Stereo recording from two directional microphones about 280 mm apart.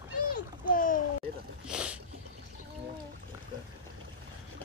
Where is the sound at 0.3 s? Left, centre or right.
Left.